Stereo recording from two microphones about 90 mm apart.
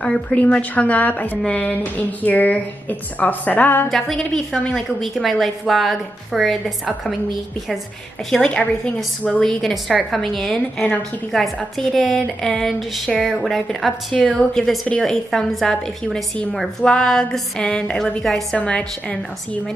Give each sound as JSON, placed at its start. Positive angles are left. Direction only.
{"t": 0.0, "sound": "a woman's voice", "side_deg": 10}
{"t": 3.9, "sound": "a woman's voice", "side_deg": 0}
{"t": 8.3, "sound": "a woman's voice", "side_deg": 5}
{"t": 9.5, "sound": "a woman's voice", "side_deg": 5}